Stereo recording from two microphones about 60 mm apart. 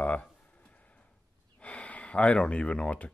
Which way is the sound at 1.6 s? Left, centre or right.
Left.